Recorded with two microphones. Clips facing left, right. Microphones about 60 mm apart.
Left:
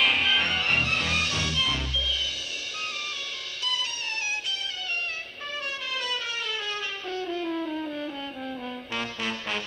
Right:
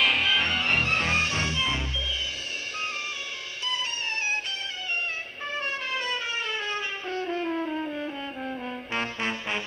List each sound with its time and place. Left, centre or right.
0.0 s music: centre
0.8 s music: right
5.5 s music: right
8.9 s brass instrument: right